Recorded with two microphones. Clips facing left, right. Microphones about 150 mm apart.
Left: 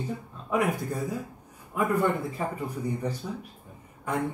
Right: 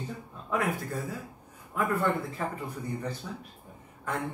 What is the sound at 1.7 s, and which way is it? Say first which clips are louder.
A man's voice: left 3 dB; 15° left (ahead or behind).